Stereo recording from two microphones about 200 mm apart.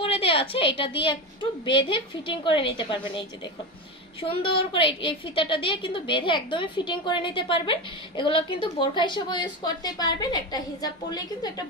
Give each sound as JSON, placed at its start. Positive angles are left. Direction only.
{"t": 0.0, "sound": "a woman's voice", "side_deg": 30}